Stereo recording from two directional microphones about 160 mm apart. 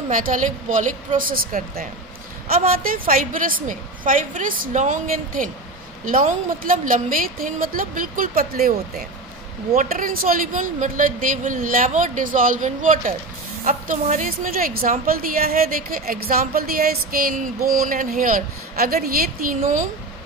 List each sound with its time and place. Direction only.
0.1 s a woman's voice: 55° right (ahead or behind)
9.8 s a woman's voice: 60° right (ahead or behind)